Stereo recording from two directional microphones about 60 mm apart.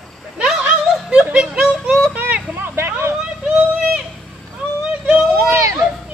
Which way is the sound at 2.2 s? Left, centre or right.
Right.